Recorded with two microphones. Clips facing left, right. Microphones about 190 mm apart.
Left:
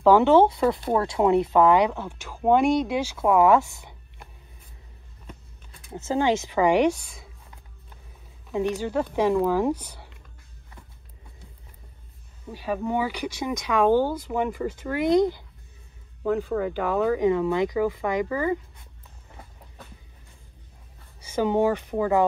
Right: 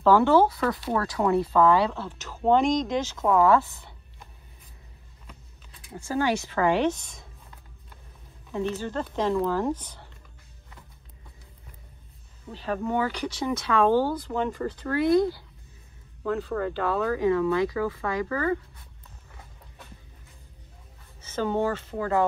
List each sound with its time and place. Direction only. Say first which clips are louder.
0.0 s speech: left 3 dB; 15° left (ahead or behind)
5.9 s speech: left 3 dB; 25° left (ahead or behind)
8.5 s speech: left 3 dB; 15° left (ahead or behind)
12.4 s speech: left 1 dB; 10° left (ahead or behind)
21.2 s speech: left 4 dB; 10° left (ahead or behind)